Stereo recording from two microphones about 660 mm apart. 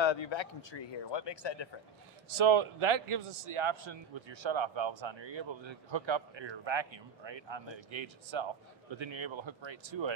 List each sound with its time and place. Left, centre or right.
0.0 s speech: left
2.3 s a man's voice: right